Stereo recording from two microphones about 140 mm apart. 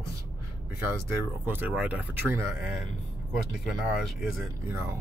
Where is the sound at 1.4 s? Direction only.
15° right (ahead or behind).